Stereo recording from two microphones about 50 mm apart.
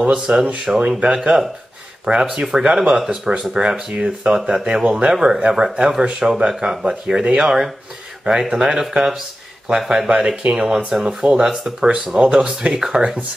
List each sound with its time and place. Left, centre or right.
0.0 s speech: right
10.9 s speech: centre